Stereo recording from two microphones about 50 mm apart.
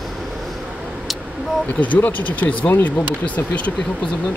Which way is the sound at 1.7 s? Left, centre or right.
Left.